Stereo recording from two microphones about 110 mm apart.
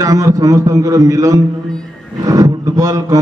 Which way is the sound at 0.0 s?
30° right (ahead or behind).